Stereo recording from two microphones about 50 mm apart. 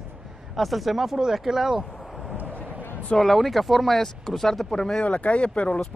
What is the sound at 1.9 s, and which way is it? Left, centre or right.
Vehicle, centre.